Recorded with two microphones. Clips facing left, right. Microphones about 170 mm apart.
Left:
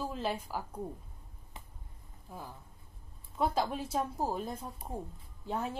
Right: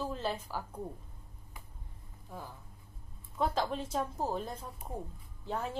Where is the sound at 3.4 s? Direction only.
10° left (ahead or behind).